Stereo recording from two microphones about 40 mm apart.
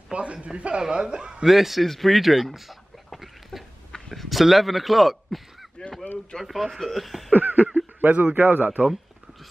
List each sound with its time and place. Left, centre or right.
0.1 s a man's voice: right
1.4 s a man's voice: centre
2.5 s a sound: centre
3.9 s a man's voice: centre
7.3 s a man's voice: right
8.4 s a man's voice: right